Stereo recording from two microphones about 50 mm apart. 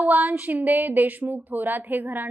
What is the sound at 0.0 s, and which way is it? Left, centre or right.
A woman's voice, right.